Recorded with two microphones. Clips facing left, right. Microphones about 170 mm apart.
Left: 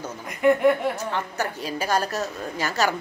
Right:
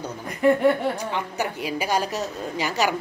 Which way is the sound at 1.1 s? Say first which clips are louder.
Right 1 dB; 15° right (ahead or behind).